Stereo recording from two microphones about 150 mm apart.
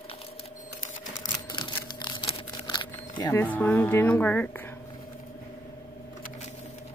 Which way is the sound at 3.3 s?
10° left (ahead or behind).